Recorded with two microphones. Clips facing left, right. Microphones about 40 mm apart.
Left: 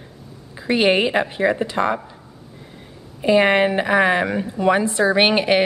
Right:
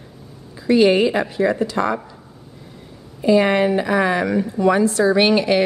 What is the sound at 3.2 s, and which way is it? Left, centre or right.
A woman's voice, left.